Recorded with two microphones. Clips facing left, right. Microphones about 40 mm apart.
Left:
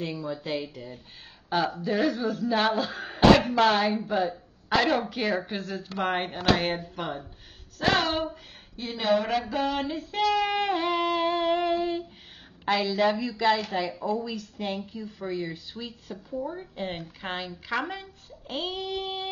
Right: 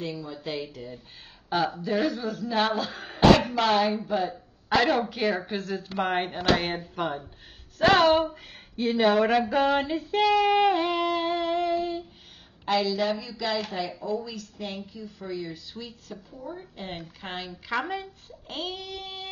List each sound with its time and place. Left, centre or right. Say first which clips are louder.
0.0 s a woman's voice: left 2 dB; centre
7.8 s a sound: right 6 dB; centre
8.8 s speech: right 9 dB; right
9.6 s female singing: right 4 dB; right
9.9 s a woman's voice: right 3 dB; centre
11.6 s a sound: left 1 dB; left
12.8 s a woman's voice: left 2 dB; centre
13.1 s a woman's voice: left 4 dB; left
14.3 s a woman's voice: left 4 dB; left
15.8 s a woman's voice: left 2 dB; centre
18.9 s a woman's voice: left 6 dB; centre